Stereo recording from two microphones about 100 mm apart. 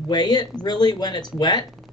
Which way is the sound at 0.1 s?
45° left (ahead or behind).